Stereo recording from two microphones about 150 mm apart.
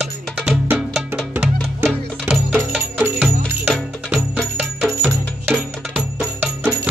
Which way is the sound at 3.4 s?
5° left (ahead or behind).